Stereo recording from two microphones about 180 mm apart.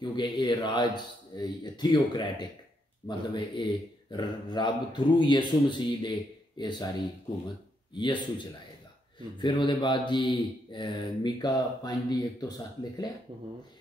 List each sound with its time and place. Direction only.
0.0 s speech: 25° left (ahead or behind)
9.4 s speech: 25° left (ahead or behind)